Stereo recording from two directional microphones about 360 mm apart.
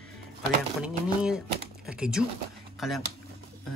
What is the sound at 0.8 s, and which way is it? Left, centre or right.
Speech, centre.